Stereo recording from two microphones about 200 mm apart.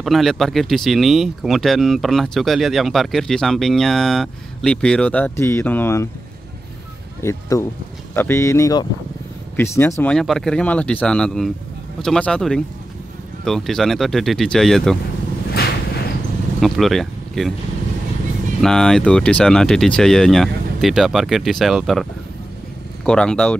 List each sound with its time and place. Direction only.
0.0 s speech: centre (ahead or behind)
7.2 s speech: 15° left (ahead or behind)
15.5 s a sound: 50° left (ahead or behind)
16.5 s speech: centre (ahead or behind)
18.6 s speech: centre (ahead or behind)
23.0 s speech: 5° left (ahead or behind)